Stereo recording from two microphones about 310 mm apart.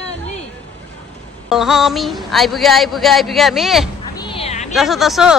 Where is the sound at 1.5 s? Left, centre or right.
Centre.